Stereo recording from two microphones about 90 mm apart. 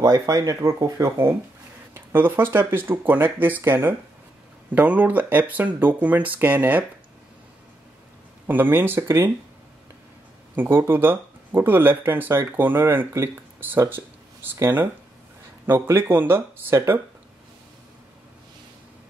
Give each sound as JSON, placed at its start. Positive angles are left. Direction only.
{"t": 0.0, "sound": "speech", "side_deg": -40}
{"t": 2.0, "sound": "speech", "side_deg": -25}
{"t": 8.5, "sound": "speech", "side_deg": -20}
{"t": 10.5, "sound": "speech", "side_deg": -20}